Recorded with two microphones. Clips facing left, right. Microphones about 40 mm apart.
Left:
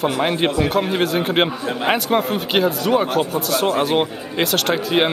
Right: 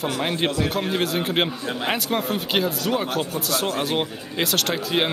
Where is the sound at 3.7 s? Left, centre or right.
Centre.